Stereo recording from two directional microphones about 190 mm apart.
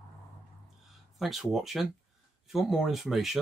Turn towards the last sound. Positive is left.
turn(degrees=0)  # may be behind; listen again after turning